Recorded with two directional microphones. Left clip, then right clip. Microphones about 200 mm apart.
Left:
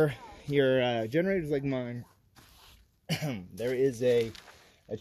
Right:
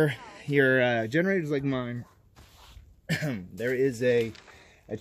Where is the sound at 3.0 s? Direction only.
20° left (ahead or behind).